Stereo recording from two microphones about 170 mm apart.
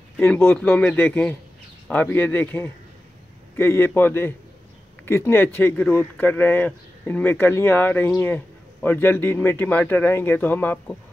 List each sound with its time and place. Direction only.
0.2 s speech: 10° left (ahead or behind)